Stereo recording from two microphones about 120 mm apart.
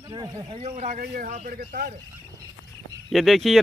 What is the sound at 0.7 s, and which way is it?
Speech, 90° right.